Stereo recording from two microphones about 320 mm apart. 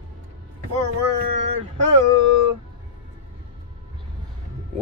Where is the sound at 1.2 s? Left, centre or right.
Right.